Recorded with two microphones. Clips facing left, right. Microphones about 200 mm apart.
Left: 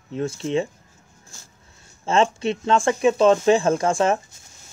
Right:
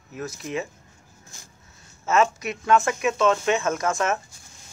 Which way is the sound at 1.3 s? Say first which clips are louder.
Left 1 dB; 20° right (ahead or behind).